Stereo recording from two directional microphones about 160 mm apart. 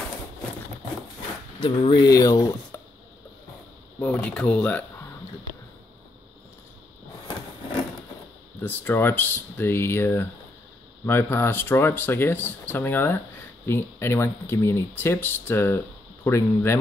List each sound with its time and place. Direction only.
1.6 s speech: 25° left (ahead or behind)
4.0 s speech: 10° left (ahead or behind)
8.5 s speech: 15° left (ahead or behind)